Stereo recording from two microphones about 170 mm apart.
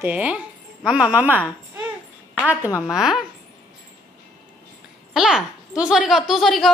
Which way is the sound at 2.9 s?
5° right (ahead or behind).